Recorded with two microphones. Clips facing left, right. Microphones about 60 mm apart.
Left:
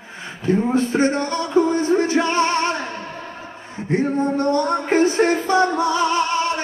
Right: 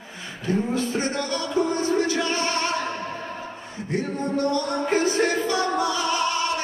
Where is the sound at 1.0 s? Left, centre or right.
Left.